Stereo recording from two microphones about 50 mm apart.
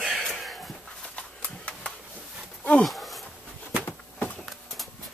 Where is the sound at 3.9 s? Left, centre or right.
Left.